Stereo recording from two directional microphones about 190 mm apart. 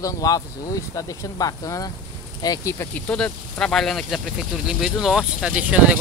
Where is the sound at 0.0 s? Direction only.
20° left (ahead or behind).